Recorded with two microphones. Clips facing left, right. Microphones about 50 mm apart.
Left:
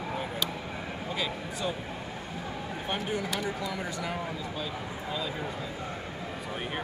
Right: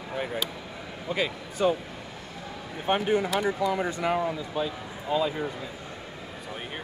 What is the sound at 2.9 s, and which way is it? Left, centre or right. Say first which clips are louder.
Speech: right 8 dB; right.